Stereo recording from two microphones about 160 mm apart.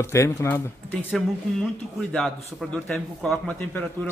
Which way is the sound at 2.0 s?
5° left (ahead or behind).